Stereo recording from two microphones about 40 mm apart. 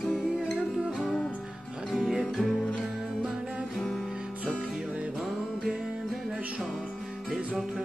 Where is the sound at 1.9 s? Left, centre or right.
Centre.